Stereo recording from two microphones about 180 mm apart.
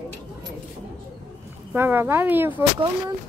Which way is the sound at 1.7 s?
10° right (ahead or behind).